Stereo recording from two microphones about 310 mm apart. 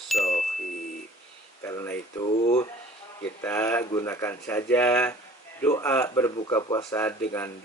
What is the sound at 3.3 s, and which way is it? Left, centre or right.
Speech, centre.